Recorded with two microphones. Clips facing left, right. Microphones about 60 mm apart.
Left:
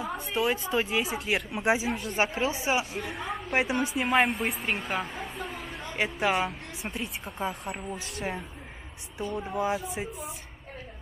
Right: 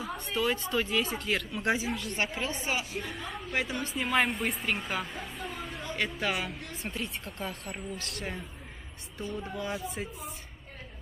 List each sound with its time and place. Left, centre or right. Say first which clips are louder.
0.0 s a woman's voice: left 2 dB; centre
3.5 s speech: left 6 dB; left
3.8 s speech: left 1 dB; centre
6.8 s a woman's voice: left 2 dB; centre